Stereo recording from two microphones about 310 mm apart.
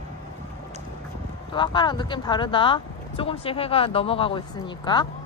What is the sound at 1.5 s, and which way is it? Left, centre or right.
Speech, centre.